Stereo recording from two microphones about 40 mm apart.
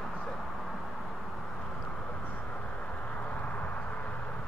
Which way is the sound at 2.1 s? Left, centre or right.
Left.